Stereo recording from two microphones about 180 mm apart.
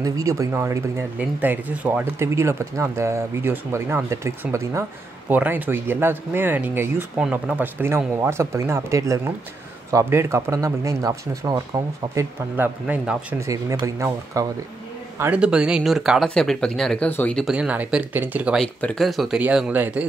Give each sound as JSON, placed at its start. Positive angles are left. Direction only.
{"t": 0.0, "sound": "speech", "side_deg": -20}
{"t": 13.5, "sound": "speech", "side_deg": -20}